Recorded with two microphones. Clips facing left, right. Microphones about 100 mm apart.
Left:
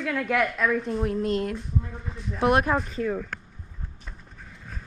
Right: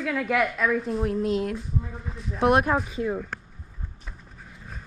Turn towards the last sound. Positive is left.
turn(degrees=-5)  # may be behind; listen again after turning